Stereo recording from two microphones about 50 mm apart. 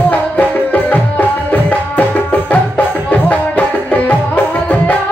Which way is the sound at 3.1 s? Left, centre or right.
Left.